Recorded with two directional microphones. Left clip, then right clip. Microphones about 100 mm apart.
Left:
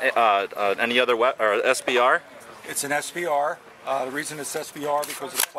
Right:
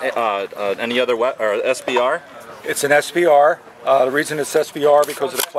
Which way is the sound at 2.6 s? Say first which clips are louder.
Right 11 dB; 20° right (ahead or behind).